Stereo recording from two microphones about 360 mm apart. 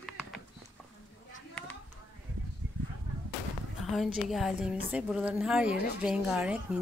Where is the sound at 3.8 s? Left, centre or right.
Centre.